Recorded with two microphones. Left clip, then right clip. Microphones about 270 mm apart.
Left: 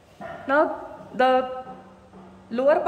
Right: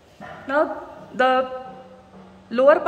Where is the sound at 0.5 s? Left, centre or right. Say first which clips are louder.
Even; centre.